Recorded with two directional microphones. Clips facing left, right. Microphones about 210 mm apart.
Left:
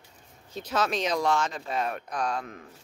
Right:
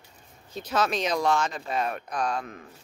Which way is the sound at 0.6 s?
Centre (ahead or behind).